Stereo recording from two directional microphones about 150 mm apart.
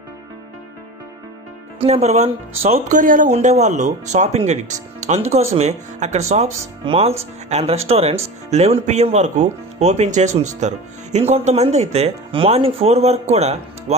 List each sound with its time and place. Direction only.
1.8 s speech: 45° right (ahead or behind)
3.0 s speech: 60° right (ahead or behind); by 13.9 s 45° right (ahead or behind)